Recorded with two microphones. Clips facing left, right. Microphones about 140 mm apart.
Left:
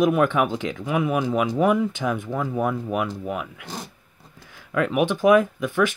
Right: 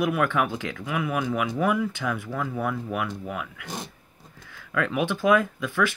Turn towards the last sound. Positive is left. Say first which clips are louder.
# left 4 dB
turn(degrees=15)  # may be behind; listen again after turning